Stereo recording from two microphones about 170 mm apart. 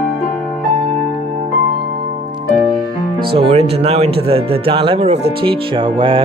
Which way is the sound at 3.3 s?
40° right (ahead or behind).